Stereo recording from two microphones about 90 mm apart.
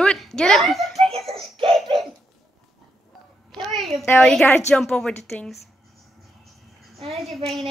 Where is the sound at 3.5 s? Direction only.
Centre (ahead or behind).